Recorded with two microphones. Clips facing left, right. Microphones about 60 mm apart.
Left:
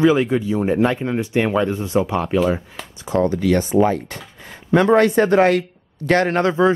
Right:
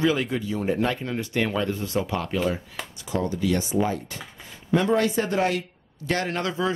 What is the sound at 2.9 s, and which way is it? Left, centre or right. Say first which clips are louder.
Speech: left 9 dB; left.